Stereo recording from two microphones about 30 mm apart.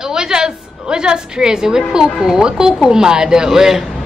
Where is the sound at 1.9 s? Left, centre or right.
Right.